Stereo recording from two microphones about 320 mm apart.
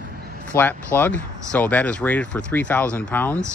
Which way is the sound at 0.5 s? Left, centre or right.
Centre.